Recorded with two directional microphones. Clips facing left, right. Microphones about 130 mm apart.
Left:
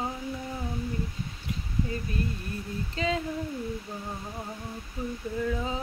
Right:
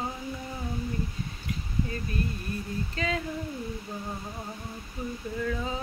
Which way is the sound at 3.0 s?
20° left (ahead or behind).